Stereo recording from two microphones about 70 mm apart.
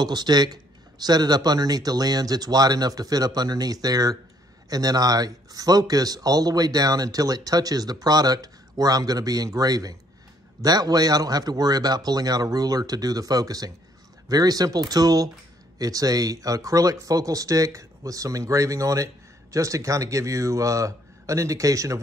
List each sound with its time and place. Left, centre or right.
0.0 s a man's voice: right